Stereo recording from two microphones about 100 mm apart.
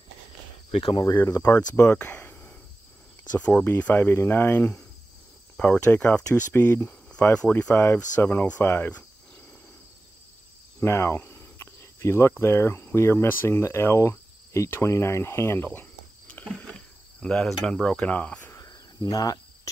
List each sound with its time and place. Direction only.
0.7 s speech: 70° left (ahead or behind)
1.0 s speech: 35° left (ahead or behind)
1.4 s speech: 25° left (ahead or behind)
10.8 s speech: 25° left (ahead or behind)
18.7 s cricket: 40° left (ahead or behind)